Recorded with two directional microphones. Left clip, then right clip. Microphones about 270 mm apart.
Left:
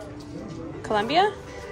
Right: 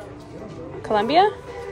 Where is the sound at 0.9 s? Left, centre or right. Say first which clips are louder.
Right 4 dB; centre.